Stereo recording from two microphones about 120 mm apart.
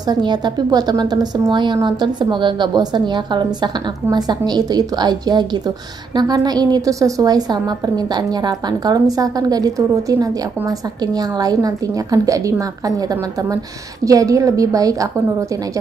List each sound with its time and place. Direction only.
0.1 s a woman's voice: 40° right (ahead or behind)